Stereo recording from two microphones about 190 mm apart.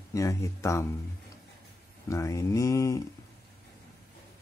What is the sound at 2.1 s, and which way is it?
Speech, 15° left (ahead or behind).